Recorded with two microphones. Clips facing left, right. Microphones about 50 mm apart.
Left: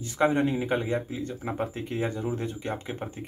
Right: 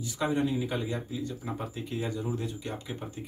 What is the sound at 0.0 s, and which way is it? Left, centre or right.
Speech, left.